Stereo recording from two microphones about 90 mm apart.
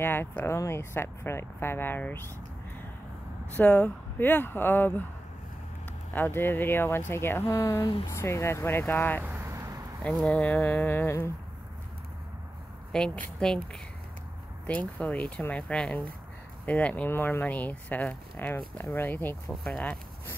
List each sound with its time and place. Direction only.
0.0 s speech: 25° left (ahead or behind)
3.5 s speech: 20° left (ahead or behind)
6.1 s speech: 25° left (ahead or behind)
9.2 s vehicle: 30° right (ahead or behind)
10.0 s speech: 10° left (ahead or behind); by 11.3 s 30° left (ahead or behind)
12.9 s speech: 10° left (ahead or behind)
14.7 s speech: 15° left (ahead or behind)
19.5 s speech: 5° left (ahead or behind)